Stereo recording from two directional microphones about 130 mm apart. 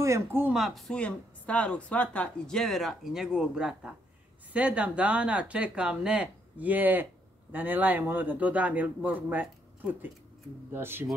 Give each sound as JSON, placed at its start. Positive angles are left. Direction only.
{"t": 0.0, "sound": "speech", "side_deg": -20}
{"t": 0.5, "sound": "speech", "side_deg": 0}